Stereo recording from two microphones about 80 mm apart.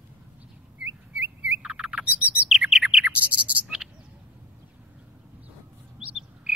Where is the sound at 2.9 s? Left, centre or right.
Centre.